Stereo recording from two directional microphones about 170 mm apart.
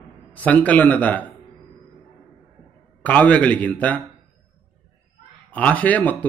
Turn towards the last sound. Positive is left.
turn(degrees=10)  # may be behind; listen again after turning